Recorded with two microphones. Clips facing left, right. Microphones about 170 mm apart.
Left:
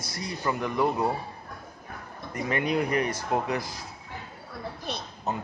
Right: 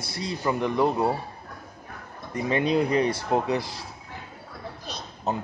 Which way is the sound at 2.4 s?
25° right (ahead or behind).